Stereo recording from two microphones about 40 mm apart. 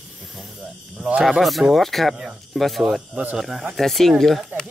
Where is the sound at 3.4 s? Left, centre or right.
Centre.